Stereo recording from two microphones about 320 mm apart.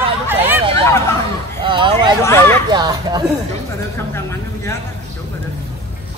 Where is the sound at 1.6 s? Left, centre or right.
Centre.